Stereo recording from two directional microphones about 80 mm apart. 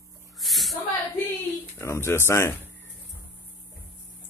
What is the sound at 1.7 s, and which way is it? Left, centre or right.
Speech, left.